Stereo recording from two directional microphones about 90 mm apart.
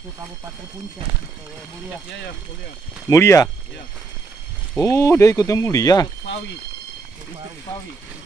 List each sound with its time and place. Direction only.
3.1 s speech: 35° left (ahead or behind)
4.7 s speech: 35° left (ahead or behind)